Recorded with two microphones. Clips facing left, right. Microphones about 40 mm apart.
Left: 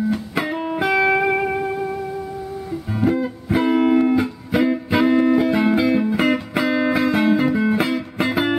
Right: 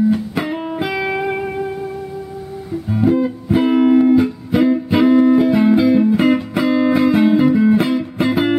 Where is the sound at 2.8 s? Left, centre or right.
Centre.